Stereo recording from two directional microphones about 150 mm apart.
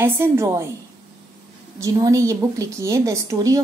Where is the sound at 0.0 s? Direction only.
15° right (ahead or behind).